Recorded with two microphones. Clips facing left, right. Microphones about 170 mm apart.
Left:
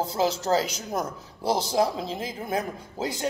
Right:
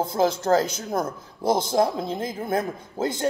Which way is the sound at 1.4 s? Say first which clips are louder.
Right 3 dB; 30° left (ahead or behind).